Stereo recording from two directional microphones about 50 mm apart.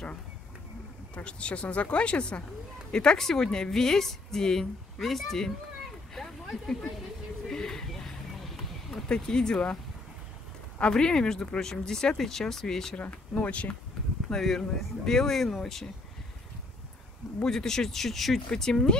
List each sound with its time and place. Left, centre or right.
1.1 s a woman's voice: left; by 5.5 s centre
6.1 s a sound: centre
9.1 s a woman's voice: centre
10.8 s a woman's voice: centre
12.9 s speech: left
14.3 s a woman's voice: centre
17.4 s a woman's voice: centre